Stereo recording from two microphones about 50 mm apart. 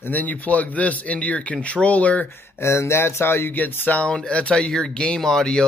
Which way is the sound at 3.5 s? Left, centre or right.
Left.